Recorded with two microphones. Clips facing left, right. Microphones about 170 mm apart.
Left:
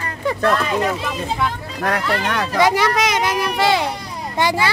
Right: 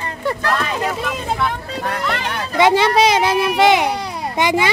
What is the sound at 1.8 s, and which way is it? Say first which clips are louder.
Speech: left 3 dB; 75° left (ahead or behind).